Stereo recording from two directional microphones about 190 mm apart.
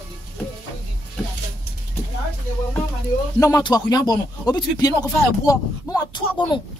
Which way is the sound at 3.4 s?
20° left (ahead or behind).